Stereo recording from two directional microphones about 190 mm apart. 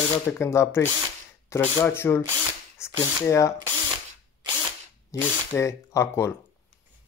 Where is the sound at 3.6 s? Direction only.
25° right (ahead or behind).